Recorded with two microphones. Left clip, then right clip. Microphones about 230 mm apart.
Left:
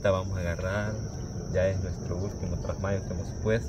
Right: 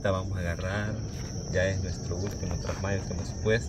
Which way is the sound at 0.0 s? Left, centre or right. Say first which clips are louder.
Left 3 dB; centre.